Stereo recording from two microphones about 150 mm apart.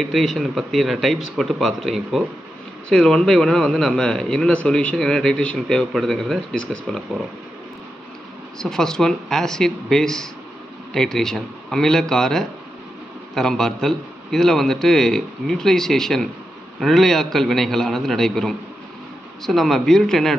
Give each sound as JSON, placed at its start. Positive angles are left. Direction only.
{"t": 0.0, "sound": "a man's voice", "side_deg": 0}
{"t": 8.5, "sound": "a man's voice", "side_deg": 5}